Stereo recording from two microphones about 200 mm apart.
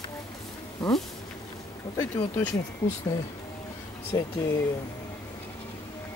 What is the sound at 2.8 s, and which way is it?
Speech, 15° left (ahead or behind).